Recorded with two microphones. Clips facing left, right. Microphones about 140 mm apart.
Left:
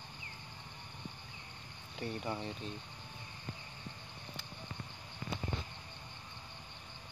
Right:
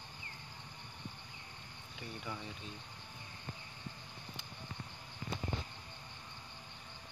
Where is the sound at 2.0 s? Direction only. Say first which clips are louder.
Left 6 dB; 35° left (ahead or behind).